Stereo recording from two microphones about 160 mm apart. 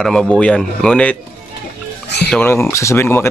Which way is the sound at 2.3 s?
15° left (ahead or behind).